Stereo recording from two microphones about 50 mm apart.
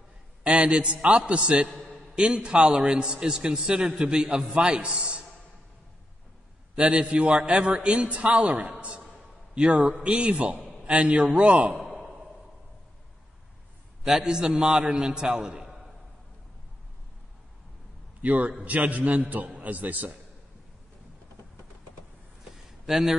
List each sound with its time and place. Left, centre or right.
0.4 s a man's voice: right
6.7 s a man's voice: right
10.0 s a man's voice: right
11.8 s sigh: centre
14.2 s a man's voice: centre
18.2 s a man's voice: right
22.8 s a man's voice: centre